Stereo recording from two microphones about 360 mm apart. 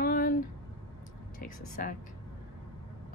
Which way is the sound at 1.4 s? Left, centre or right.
Left.